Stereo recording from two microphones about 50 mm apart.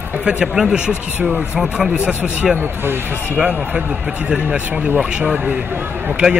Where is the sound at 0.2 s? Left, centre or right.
Centre.